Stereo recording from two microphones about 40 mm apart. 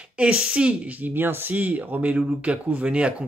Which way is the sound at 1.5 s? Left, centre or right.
Right.